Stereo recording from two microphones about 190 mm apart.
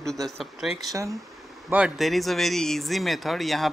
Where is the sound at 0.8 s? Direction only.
15° right (ahead or behind).